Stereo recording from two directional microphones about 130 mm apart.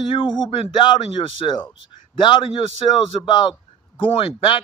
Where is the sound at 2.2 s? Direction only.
40° left (ahead or behind).